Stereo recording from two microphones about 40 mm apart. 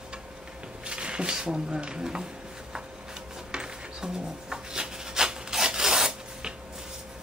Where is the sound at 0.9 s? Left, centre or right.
Right.